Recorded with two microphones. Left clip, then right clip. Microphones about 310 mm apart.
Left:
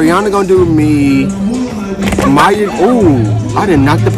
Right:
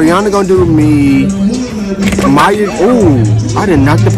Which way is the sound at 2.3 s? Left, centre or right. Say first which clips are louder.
Even; centre.